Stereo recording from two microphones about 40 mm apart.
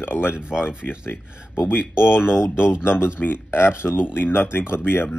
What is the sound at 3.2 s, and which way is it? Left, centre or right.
Speech, left.